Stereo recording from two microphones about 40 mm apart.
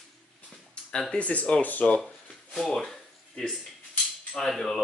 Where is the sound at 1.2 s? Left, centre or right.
Left.